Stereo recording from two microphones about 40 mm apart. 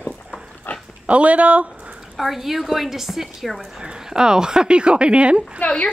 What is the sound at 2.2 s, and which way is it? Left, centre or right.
A woman's voice, centre.